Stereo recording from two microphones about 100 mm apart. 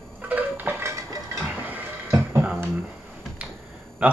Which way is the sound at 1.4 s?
15° right (ahead or behind).